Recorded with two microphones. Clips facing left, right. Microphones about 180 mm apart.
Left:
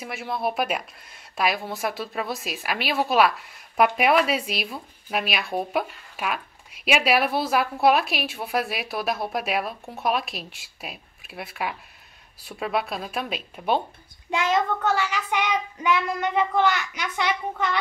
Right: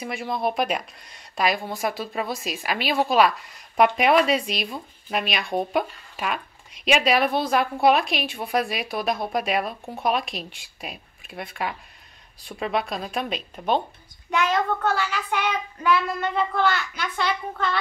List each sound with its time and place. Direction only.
0.0 s a woman's voice: 5° left (ahead or behind)
14.3 s a child's voice: 25° left (ahead or behind)
15.0 s child singing: 15° left (ahead or behind)